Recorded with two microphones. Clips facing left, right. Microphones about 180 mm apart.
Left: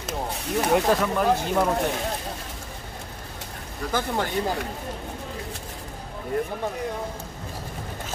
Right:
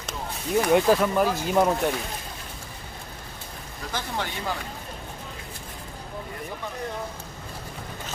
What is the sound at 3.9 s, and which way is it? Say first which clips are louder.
Speech: left 6 dB; 45° left (ahead or behind).